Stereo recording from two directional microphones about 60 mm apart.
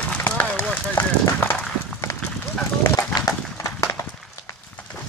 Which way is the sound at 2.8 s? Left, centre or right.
Left.